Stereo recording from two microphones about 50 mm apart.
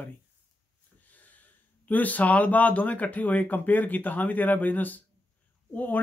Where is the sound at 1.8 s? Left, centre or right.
Left.